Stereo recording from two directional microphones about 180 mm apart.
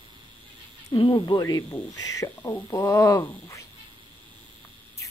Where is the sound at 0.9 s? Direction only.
25° left (ahead or behind).